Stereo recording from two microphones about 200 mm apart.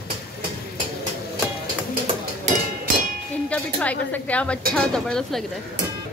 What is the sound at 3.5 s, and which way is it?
A woman's voice, 5° left (ahead or behind).